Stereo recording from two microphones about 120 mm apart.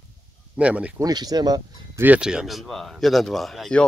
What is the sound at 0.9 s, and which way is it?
Speech, 30° right (ahead or behind).